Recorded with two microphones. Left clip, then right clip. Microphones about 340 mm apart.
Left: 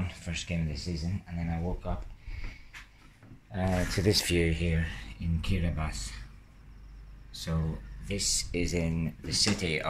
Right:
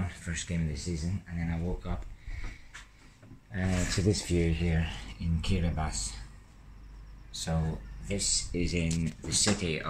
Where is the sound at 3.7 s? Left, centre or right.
Left.